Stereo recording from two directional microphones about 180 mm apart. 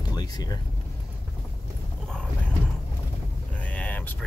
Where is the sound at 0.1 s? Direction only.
20° left (ahead or behind).